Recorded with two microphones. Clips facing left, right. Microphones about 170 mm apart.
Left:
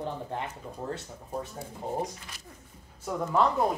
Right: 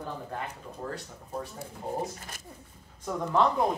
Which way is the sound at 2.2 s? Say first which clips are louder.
Right 3 dB; 50° right (ahead or behind).